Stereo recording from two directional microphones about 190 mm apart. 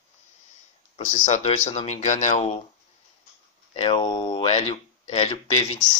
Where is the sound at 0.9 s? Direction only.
40° left (ahead or behind).